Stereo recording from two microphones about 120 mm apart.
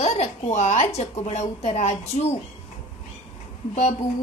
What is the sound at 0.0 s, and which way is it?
A woman's voice, 65° left (ahead or behind).